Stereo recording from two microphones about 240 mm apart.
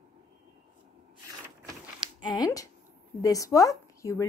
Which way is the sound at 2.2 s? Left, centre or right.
Centre.